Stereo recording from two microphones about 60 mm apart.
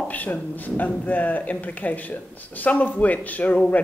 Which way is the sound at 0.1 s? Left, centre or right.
Left.